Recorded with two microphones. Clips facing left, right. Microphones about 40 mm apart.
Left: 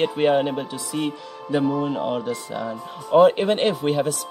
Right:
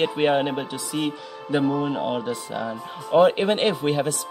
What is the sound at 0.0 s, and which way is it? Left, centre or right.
Speech, centre.